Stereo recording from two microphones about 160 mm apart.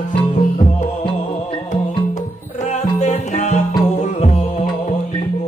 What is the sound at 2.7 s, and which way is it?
Music, 45° left (ahead or behind).